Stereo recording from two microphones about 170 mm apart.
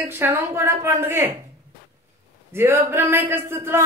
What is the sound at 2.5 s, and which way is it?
A woman's voice, 15° right (ahead or behind).